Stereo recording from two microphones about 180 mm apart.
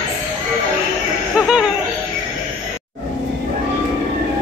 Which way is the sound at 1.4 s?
5° right (ahead or behind).